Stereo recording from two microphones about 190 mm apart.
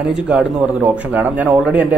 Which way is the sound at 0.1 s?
5° right (ahead or behind).